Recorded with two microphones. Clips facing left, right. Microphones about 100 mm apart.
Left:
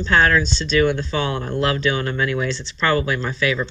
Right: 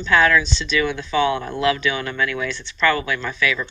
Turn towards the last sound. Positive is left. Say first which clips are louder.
# left 2 dB
turn(degrees=30)  # may be behind; listen again after turning